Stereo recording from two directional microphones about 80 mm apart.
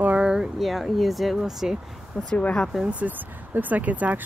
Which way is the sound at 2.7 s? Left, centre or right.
Centre.